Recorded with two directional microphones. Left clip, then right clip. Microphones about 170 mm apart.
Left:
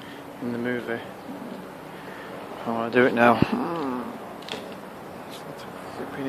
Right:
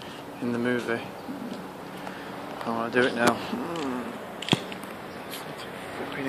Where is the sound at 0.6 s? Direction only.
10° right (ahead or behind).